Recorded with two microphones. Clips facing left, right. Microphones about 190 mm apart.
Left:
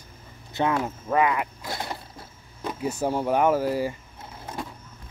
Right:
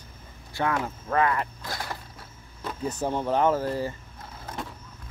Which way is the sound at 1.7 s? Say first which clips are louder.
Left 4 dB; 25° left (ahead or behind).